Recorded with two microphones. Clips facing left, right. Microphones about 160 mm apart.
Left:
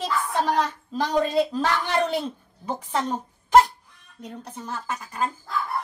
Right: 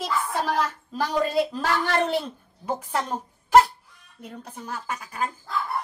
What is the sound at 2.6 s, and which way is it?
A woman's voice, 10° right (ahead or behind).